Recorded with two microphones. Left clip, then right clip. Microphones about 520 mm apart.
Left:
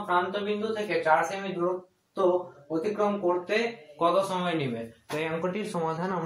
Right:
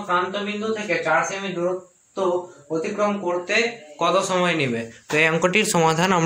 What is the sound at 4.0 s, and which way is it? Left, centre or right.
Speech, left.